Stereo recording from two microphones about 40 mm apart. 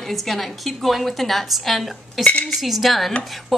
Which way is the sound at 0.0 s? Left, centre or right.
Centre.